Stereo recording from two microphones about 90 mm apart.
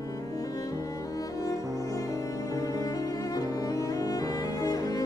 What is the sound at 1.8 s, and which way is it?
Cello, 40° left (ahead or behind).